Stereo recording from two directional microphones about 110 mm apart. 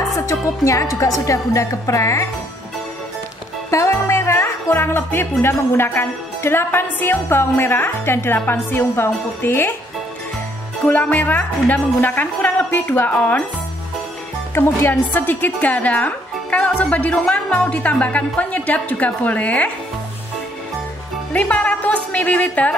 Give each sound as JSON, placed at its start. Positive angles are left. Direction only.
{"t": 0.3, "sound": "a woman's voice", "side_deg": 30}
{"t": 3.7, "sound": "music", "side_deg": 25}
{"t": 5.4, "sound": "a woman's voice", "side_deg": 20}
{"t": 10.9, "sound": "a woman's voice", "side_deg": 15}
{"t": 14.5, "sound": "a woman's voice", "side_deg": 20}
{"t": 21.3, "sound": "a woman's voice", "side_deg": 10}